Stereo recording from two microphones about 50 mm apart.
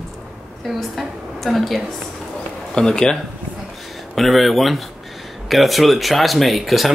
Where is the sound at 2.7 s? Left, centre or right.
Centre.